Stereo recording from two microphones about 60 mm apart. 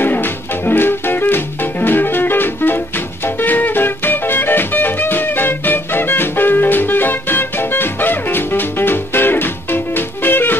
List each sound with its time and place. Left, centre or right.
0.0 s music: left